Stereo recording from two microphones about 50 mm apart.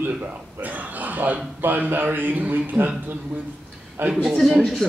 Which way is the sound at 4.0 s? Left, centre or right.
Right.